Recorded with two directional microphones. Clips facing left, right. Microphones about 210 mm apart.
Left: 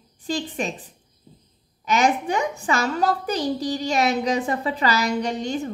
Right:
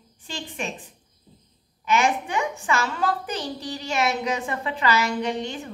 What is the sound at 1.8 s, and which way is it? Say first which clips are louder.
A child's voice: left 2 dB; 40° left (ahead or behind).